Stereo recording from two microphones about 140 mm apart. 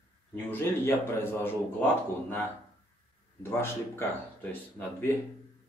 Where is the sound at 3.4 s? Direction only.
15° left (ahead or behind).